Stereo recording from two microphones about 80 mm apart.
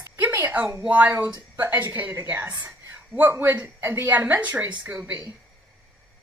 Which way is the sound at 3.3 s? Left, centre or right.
Right.